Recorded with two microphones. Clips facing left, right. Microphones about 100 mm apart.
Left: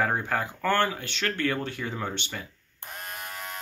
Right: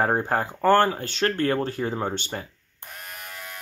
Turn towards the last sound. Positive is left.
turn(degrees=15)  # may be behind; listen again after turning